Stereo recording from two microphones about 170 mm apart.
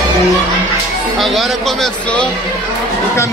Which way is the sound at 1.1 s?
Centre (ahead or behind).